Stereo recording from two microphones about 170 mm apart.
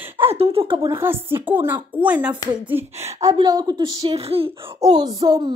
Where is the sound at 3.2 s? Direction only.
20° right (ahead or behind).